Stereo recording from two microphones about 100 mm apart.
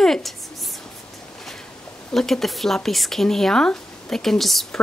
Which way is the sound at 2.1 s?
5° left (ahead or behind).